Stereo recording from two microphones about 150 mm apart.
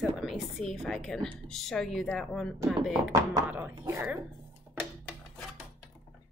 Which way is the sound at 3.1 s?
15° right (ahead or behind).